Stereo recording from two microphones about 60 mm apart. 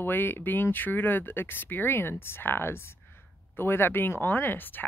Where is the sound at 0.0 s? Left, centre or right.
Left.